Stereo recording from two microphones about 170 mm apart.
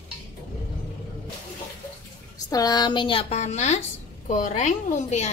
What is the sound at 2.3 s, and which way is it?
A woman's voice, 20° left (ahead or behind).